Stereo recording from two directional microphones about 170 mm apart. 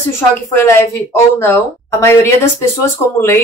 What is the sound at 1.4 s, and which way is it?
Speech, 15° left (ahead or behind).